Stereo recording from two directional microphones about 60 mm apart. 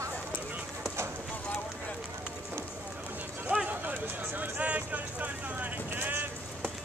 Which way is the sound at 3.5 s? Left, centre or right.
Right.